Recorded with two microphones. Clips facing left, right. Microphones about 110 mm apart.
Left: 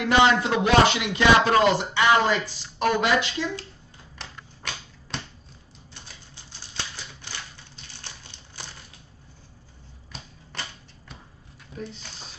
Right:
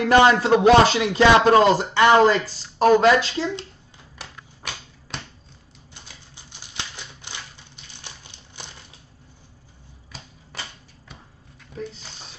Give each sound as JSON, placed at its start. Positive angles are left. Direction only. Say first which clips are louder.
{"t": 0.0, "sound": "speech", "louder": "right 4 dB", "side_deg": -35}
{"t": 6.3, "sound": "typewriter", "louder": "right 1 dB", "side_deg": -15}
{"t": 10.1, "sound": "a sound", "louder": "even", "side_deg": 0}